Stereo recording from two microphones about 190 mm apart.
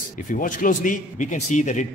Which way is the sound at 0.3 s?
45° left (ahead or behind).